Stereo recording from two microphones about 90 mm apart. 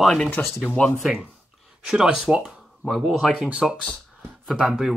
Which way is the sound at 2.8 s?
Centre (ahead or behind).